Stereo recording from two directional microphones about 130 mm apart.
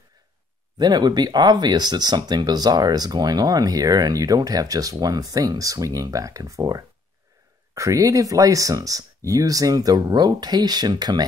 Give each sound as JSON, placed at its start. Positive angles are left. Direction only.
{"t": 0.7, "sound": "speech", "side_deg": -35}